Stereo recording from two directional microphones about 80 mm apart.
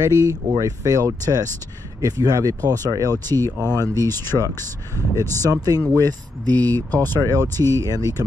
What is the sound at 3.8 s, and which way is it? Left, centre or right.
Speech, right.